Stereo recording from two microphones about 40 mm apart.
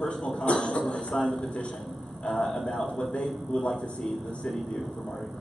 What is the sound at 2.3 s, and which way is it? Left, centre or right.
Speech, left.